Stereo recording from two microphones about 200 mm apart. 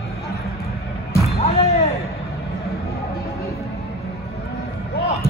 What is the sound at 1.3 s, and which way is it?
Music, 30° left (ahead or behind).